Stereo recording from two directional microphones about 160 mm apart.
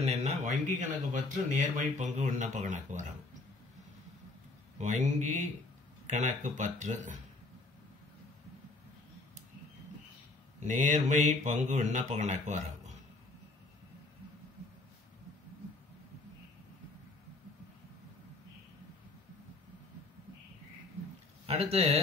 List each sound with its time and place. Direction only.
0.0 s speech: 45° right (ahead or behind)
4.7 s speech: 50° right (ahead or behind)
10.6 s speech: 50° right (ahead or behind)
21.5 s speech: 40° right (ahead or behind)